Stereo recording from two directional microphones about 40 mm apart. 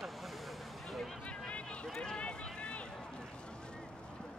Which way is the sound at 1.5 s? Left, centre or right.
Left.